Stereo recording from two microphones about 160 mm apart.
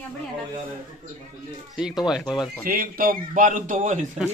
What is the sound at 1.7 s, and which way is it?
Speech, 5° right (ahead or behind).